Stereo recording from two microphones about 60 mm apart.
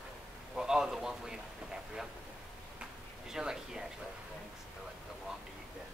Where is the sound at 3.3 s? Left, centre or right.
Centre.